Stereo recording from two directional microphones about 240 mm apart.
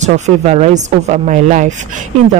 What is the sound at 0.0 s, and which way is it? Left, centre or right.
A woman's voice, right.